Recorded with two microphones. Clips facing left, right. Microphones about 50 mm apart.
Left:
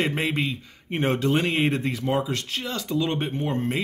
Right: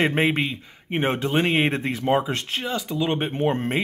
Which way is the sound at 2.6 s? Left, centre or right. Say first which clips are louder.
Right 3 dB; centre.